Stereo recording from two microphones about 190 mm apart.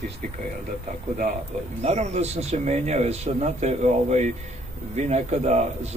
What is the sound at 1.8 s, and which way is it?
Speech, 35° right (ahead or behind).